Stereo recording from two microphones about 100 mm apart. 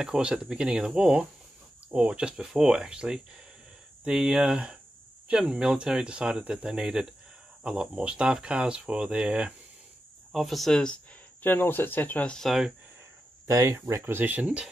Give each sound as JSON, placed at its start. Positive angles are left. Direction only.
{"t": 0.0, "sound": "speech", "side_deg": -10}
{"t": 10.3, "sound": "speech", "side_deg": 0}
{"t": 11.4, "sound": "speech", "side_deg": 20}
{"t": 12.4, "sound": "speech", "side_deg": -5}
{"t": 13.5, "sound": "speech", "side_deg": -30}